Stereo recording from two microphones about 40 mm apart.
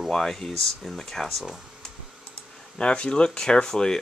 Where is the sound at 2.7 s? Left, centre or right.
Left.